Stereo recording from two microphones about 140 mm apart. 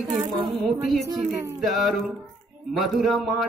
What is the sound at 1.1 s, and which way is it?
Speech, 25° right (ahead or behind).